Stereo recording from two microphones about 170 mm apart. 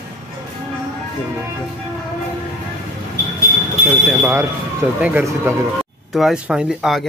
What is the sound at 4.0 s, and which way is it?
Speech, 10° right (ahead or behind).